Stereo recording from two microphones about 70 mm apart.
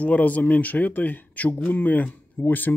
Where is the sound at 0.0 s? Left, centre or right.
Left.